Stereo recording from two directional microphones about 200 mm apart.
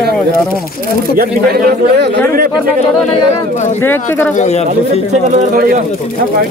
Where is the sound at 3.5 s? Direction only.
35° left (ahead or behind).